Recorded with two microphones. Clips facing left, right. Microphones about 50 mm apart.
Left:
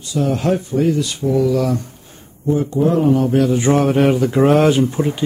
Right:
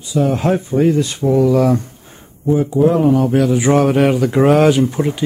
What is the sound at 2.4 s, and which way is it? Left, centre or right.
Speech, centre.